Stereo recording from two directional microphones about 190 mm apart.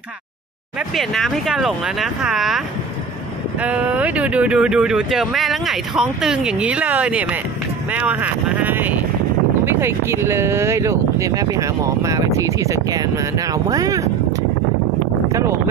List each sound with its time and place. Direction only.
0.7 s speech: centre (ahead or behind)
3.6 s speech: 5° right (ahead or behind)
15.3 s speech: 15° right (ahead or behind)